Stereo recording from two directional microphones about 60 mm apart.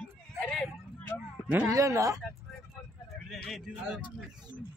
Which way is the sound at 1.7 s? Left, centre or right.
Right.